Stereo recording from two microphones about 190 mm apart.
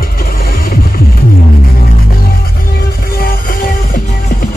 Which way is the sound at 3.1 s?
50° left (ahead or behind).